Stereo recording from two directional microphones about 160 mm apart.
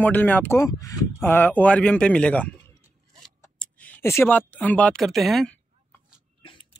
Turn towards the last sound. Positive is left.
turn(degrees=0)  # may be behind; listen again after turning